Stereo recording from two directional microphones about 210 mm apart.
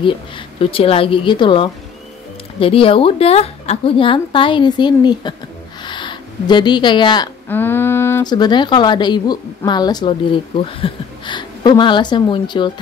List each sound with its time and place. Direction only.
0.6 s speech: 25° left (ahead or behind)
5.9 s a sound: 20° left (ahead or behind)
7.4 s speech: 10° left (ahead or behind)